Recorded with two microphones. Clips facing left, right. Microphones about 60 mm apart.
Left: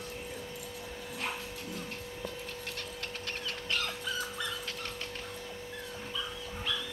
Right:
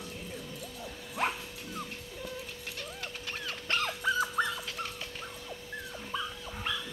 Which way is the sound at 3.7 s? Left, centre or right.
Right.